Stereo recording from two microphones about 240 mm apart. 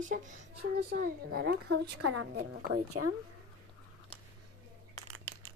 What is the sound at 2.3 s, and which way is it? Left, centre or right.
Speech, right.